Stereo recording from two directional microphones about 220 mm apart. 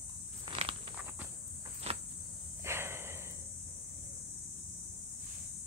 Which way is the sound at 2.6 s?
10° right (ahead or behind).